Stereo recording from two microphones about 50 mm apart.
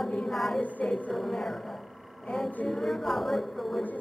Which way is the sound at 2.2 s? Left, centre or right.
Centre.